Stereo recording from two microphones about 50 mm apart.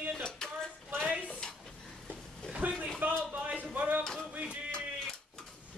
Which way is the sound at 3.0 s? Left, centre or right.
Right.